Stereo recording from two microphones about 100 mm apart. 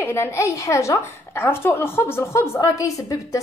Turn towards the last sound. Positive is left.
turn(degrees=35)  # may be behind; listen again after turning